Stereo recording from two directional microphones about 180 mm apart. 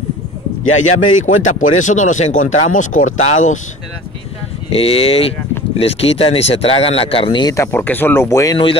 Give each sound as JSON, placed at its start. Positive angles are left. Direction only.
{"t": 0.7, "sound": "speech", "side_deg": 45}
{"t": 4.6, "sound": "speech", "side_deg": 30}